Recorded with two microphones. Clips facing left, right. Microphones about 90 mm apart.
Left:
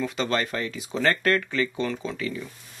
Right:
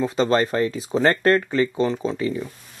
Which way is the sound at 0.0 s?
35° right (ahead or behind).